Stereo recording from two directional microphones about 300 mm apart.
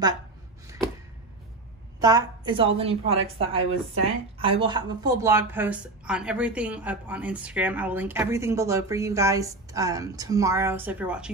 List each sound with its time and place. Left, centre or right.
2.0 s a woman's voice: centre